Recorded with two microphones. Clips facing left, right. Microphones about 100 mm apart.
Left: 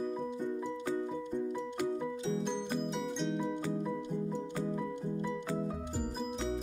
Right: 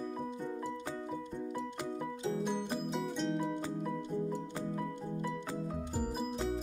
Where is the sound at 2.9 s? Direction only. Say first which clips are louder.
Even; centre (ahead or behind).